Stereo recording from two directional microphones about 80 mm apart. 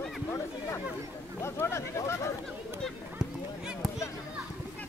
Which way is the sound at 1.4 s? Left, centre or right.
Left.